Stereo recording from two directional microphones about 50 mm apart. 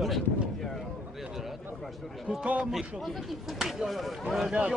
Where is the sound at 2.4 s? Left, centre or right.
Right.